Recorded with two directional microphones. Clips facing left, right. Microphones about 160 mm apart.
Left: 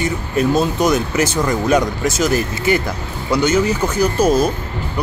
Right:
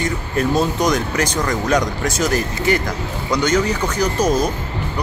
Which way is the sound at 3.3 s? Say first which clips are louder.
Left 2 dB; 10° left (ahead or behind).